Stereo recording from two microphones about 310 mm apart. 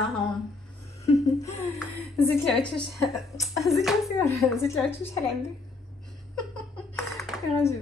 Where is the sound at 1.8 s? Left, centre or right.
Centre.